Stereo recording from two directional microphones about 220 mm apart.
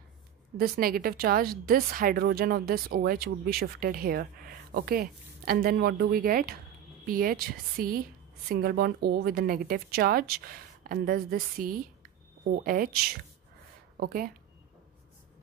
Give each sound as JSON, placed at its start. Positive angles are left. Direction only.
{"t": 0.6, "sound": "a woman's voice", "side_deg": -40}